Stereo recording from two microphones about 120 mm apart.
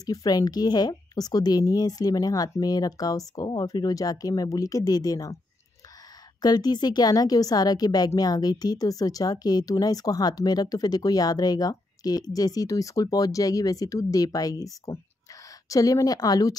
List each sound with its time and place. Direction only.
0.0 s a woman's voice: 30° left (ahead or behind)
6.4 s a woman's voice: 35° left (ahead or behind)